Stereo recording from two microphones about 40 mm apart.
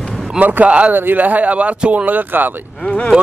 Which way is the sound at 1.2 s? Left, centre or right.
Right.